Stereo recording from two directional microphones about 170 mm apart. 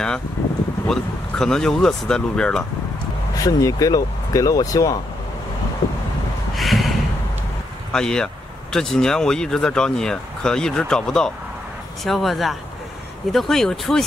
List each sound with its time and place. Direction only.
0.8 s speech: 5° left (ahead or behind)
3.3 s speech: 20° left (ahead or behind)
6.5 s snort: centre (ahead or behind)
7.9 s speech: 5° left (ahead or behind)